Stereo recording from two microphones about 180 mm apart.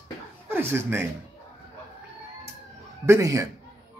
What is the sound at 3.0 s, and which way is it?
Speech, 15° right (ahead or behind).